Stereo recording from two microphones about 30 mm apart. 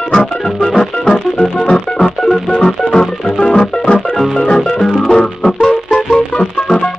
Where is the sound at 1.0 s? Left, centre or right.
Left.